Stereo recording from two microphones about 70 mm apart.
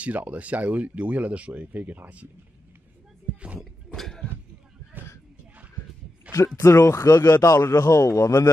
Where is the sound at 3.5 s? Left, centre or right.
Centre.